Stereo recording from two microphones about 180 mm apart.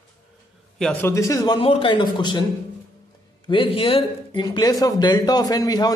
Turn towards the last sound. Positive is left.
turn(degrees=20)  # may be behind; listen again after turning